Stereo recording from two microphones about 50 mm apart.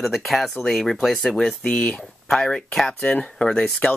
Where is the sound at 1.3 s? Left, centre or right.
Centre.